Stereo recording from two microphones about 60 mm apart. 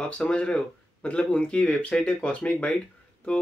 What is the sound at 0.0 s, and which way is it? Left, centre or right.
Speech, centre.